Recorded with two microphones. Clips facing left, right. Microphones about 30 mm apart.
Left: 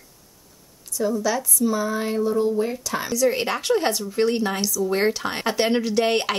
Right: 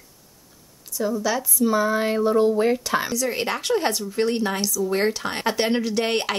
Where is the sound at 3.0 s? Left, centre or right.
Centre.